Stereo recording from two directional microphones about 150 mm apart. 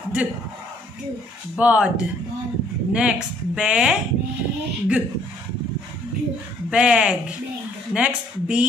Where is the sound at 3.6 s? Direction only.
5° right (ahead or behind).